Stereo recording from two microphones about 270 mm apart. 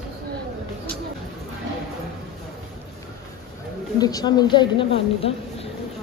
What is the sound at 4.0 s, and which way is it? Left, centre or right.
A woman's voice, centre.